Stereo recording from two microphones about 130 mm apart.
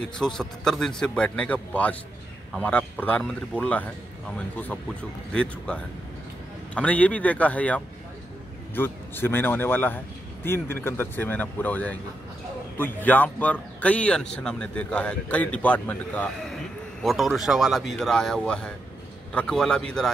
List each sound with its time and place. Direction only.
0.2 s a man's voice: 5° left (ahead or behind)
5.3 s a man's voice: 10° left (ahead or behind)
17.0 s a man's voice: centre (ahead or behind)